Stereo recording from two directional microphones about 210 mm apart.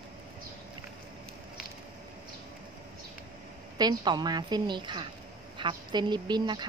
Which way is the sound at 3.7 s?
20° right (ahead or behind).